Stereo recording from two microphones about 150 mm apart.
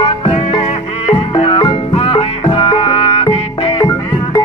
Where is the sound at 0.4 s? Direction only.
45° left (ahead or behind).